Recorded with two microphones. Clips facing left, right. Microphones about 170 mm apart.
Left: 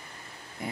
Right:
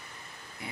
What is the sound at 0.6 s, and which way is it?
Speech, 45° left (ahead or behind).